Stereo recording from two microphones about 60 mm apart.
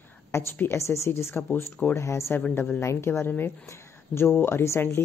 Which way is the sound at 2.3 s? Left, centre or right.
Left.